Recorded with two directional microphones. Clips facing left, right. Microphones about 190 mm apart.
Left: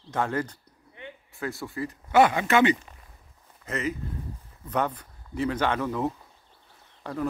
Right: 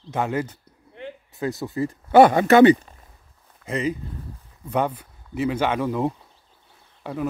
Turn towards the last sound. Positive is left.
turn(degrees=-10)  # may be behind; listen again after turning